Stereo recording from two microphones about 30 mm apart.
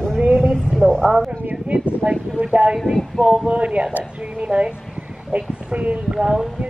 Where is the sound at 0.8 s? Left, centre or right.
Right.